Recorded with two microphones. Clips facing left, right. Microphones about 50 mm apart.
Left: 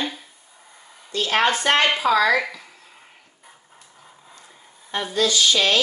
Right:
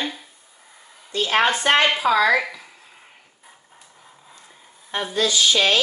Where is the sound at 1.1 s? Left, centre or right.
Centre.